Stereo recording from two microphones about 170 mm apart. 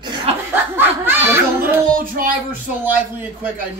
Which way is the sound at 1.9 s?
60° right (ahead or behind).